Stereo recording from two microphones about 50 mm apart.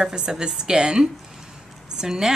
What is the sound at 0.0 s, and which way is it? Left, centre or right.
A woman's voice, centre.